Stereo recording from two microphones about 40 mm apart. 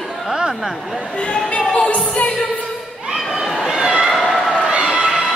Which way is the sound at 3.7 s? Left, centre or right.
Right.